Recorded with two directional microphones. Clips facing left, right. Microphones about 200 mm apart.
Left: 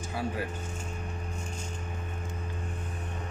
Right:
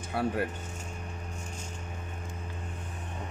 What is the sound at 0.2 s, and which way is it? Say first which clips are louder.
Speech: right 4 dB; 65° right (ahead or behind).